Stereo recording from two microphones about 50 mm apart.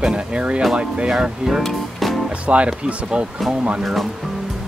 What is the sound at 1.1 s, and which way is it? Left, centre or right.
Speech, centre.